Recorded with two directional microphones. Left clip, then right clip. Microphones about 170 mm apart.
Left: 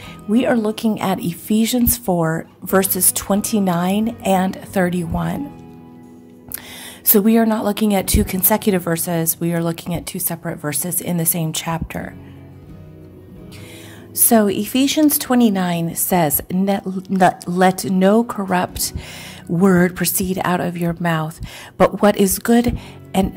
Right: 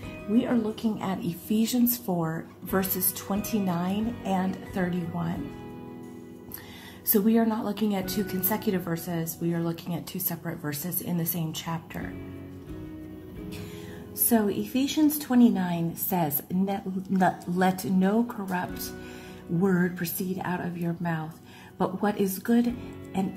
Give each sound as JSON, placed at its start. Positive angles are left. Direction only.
{"t": 0.3, "sound": "speech", "side_deg": 65}
{"t": 7.2, "sound": "speech", "side_deg": 55}
{"t": 14.3, "sound": "speech", "side_deg": 50}